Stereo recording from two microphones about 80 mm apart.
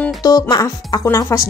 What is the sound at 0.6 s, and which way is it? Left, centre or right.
Speech, left.